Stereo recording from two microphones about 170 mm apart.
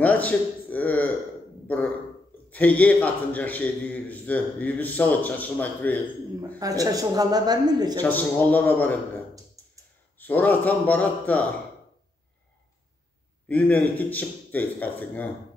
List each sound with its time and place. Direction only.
0.0 s a man's voice: 10° left (ahead or behind)
2.5 s a man's voice: 10° left (ahead or behind)
6.6 s a woman's voice: 20° right (ahead or behind)
8.0 s a man's voice: 10° left (ahead or behind)
9.6 s a sound: 20° right (ahead or behind)
10.1 s a man's voice: 10° left (ahead or behind)
13.5 s a man's voice: 10° left (ahead or behind)